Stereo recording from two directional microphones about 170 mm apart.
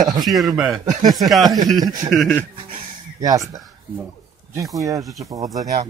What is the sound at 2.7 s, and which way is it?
Music, 20° right (ahead or behind).